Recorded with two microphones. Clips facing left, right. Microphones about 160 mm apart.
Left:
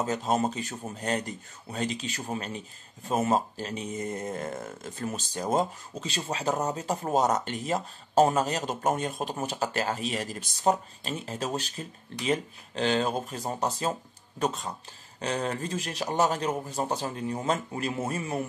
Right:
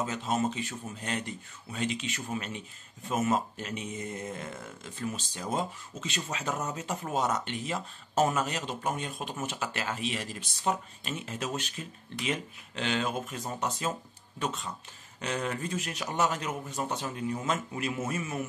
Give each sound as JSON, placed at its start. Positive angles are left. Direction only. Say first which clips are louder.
{"t": 0.0, "sound": "speech", "louder": "left 3 dB", "side_deg": 40}